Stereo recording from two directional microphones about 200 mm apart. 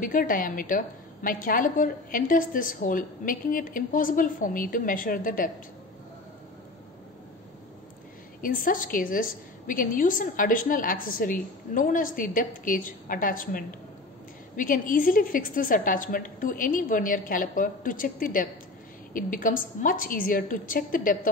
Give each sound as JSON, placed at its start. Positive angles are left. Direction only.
{"t": 0.0, "sound": "a woman's voice", "side_deg": 45}
{"t": 8.4, "sound": "a woman's voice", "side_deg": 45}